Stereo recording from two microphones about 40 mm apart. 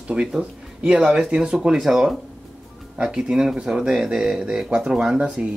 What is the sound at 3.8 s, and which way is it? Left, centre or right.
Speech, centre.